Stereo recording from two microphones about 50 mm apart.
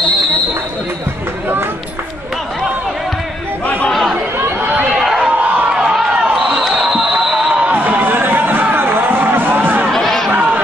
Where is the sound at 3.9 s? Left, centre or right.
Centre.